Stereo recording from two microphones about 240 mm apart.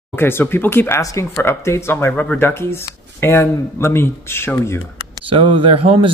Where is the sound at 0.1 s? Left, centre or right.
Centre.